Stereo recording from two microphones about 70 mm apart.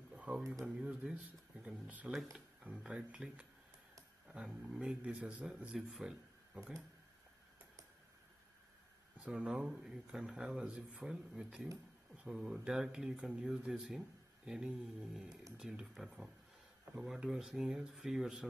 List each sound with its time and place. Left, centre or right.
0.1 s a sound: centre
0.7 s speech: centre
2.7 s speech: centre
3.1 s speech: centre
4.3 s a man's voice: centre
9.2 s speech: centre